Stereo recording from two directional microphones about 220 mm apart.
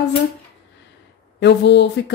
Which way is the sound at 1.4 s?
50° left (ahead or behind).